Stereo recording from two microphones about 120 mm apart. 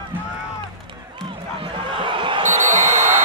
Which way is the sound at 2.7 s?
80° right.